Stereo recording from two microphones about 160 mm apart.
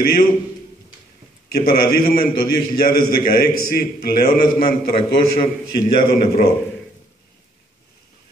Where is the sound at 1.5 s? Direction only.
70° left (ahead or behind).